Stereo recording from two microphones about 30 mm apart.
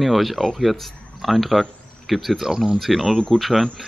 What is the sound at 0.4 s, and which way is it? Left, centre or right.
Speech, centre.